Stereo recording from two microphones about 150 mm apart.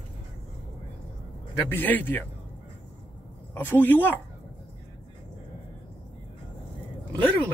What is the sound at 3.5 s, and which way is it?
Speech, 15° left (ahead or behind).